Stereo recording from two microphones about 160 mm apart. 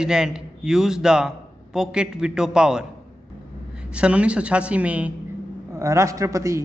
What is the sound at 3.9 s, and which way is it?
A man's voice, 5° right (ahead or behind).